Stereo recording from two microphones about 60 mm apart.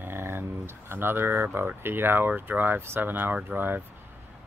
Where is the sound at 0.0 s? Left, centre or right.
Right.